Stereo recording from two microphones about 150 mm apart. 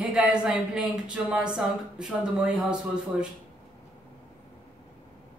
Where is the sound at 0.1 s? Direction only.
5° right (ahead or behind).